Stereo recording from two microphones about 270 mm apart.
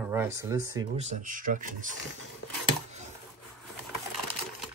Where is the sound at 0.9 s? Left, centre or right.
Right.